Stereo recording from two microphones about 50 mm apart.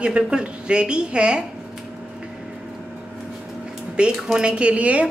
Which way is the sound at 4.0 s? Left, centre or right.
Right.